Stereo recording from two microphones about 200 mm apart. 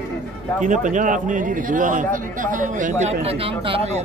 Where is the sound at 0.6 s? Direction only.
40° right (ahead or behind).